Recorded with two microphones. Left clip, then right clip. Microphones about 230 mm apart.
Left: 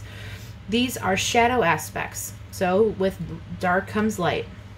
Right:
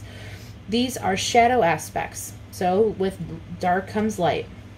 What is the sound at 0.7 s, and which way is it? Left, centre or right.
A woman's voice, centre.